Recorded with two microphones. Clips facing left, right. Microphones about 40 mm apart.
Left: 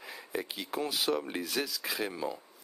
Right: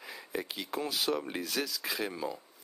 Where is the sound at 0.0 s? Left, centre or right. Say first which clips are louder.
Left 1 dB; centre.